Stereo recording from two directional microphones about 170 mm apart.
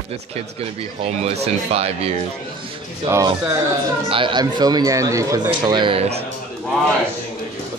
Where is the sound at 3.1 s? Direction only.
15° right (ahead or behind).